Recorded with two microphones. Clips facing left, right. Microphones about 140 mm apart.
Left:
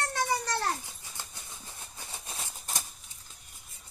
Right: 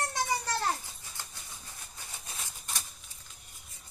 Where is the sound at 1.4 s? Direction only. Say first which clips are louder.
Left 2 dB; 25° left (ahead or behind).